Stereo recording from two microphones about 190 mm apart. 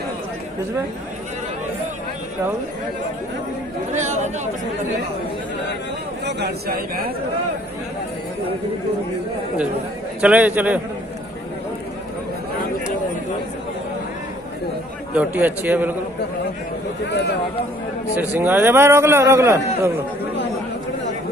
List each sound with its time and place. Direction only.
3.9 s speech: 40° right (ahead or behind)
6.2 s speech: 55° right (ahead or behind)
10.2 s a man's voice: 5° right (ahead or behind)
15.1 s a man's voice: 10° right (ahead or behind)
17.1 s speech: 60° left (ahead or behind)
18.3 s a man's voice: 10° right (ahead or behind)